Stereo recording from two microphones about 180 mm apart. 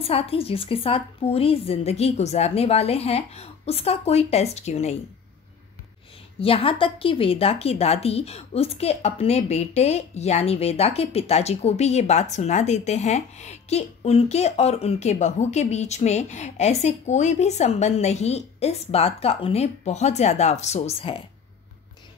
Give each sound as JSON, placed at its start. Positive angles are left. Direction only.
{"t": 0.0, "sound": "speech", "side_deg": 35}
{"t": 6.4, "sound": "speech", "side_deg": 30}